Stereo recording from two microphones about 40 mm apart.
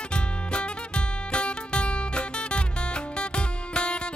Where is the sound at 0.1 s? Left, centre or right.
Left.